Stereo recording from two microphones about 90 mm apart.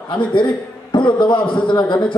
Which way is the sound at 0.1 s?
60° left (ahead or behind).